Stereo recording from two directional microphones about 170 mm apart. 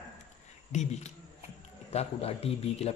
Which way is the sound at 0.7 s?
45° left (ahead or behind).